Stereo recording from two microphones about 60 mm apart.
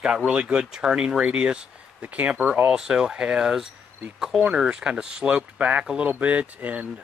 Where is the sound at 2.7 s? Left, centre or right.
Centre.